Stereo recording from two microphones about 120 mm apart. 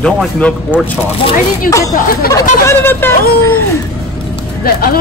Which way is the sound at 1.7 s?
30° left (ahead or behind).